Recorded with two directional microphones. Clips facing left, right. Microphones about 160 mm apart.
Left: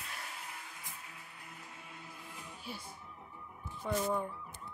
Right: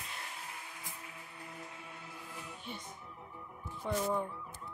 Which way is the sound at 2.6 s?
5° left (ahead or behind).